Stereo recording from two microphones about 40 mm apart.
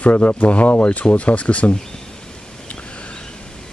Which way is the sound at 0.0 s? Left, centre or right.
Left.